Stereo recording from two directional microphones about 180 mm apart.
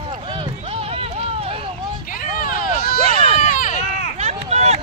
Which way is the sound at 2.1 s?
50° left (ahead or behind).